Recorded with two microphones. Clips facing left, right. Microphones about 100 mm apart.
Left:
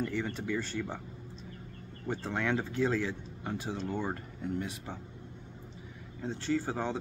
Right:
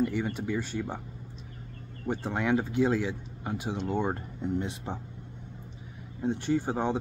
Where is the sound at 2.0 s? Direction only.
15° right (ahead or behind).